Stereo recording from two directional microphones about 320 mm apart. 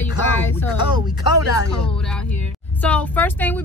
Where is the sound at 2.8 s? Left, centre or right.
Centre.